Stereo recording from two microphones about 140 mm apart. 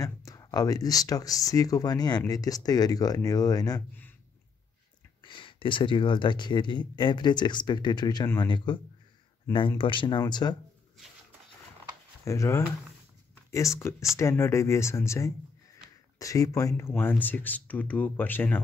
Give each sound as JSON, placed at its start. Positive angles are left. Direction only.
{"t": 0.0, "sound": "speech", "side_deg": 25}
{"t": 5.2, "sound": "speech", "side_deg": 35}
{"t": 9.8, "sound": "speech", "side_deg": 35}
{"t": 12.3, "sound": "speech", "side_deg": 20}